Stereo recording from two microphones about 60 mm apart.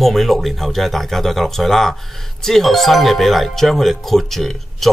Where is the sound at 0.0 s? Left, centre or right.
Centre.